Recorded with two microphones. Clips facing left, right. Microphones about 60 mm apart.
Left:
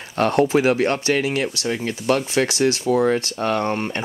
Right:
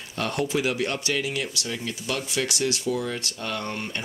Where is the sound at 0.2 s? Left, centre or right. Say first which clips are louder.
Left 9 dB; left.